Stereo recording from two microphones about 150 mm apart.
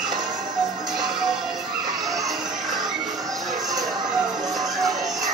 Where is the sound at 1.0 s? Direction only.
Centre (ahead or behind).